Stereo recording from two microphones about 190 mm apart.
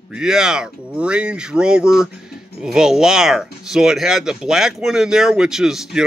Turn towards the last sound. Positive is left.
turn(degrees=0)  # may be behind; listen again after turning